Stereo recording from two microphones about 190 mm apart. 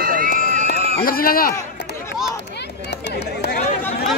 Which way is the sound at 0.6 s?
50° left (ahead or behind).